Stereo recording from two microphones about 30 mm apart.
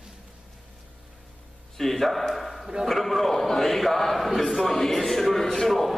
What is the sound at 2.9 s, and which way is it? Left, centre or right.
Speech, centre.